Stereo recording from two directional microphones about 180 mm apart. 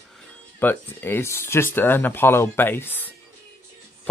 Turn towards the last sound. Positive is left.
turn(degrees=10)  # may be behind; listen again after turning